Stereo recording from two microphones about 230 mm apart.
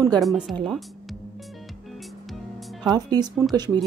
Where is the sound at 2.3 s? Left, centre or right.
Centre.